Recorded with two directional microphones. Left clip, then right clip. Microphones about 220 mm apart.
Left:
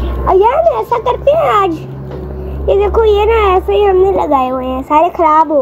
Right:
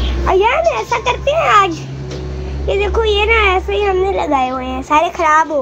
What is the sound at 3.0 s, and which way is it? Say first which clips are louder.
A child's voice: even; 15° left (ahead or behind).